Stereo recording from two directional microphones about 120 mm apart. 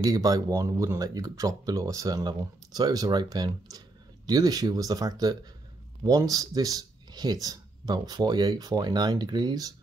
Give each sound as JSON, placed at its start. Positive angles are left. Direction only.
{"t": 0.0, "sound": "speech", "side_deg": -30}